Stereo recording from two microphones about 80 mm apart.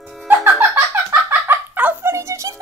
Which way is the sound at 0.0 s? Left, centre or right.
Centre.